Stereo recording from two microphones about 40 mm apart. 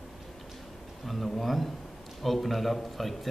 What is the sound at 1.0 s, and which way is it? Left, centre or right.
A man's voice, centre.